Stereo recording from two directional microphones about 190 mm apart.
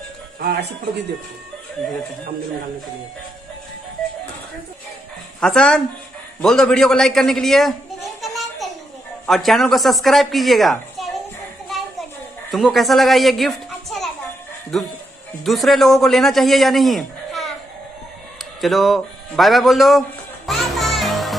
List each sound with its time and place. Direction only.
0.4 s speech: 60° right (ahead or behind)
5.4 s a man's voice: 5° left (ahead or behind)
8.2 s a sound: centre (ahead or behind)
9.2 s a man's voice: centre (ahead or behind)
12.4 s a child's voice: centre (ahead or behind)
18.6 s a sound: centre (ahead or behind)